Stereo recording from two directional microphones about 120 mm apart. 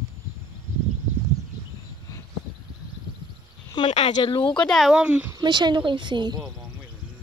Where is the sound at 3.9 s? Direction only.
70° left (ahead or behind).